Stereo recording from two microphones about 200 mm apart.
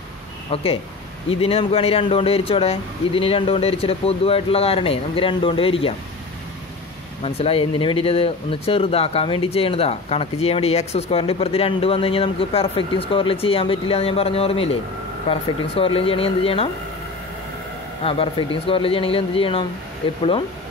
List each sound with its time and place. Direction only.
0.5 s speech: 30° left (ahead or behind)
7.2 s speech: 30° left (ahead or behind)
18.0 s speech: 25° left (ahead or behind)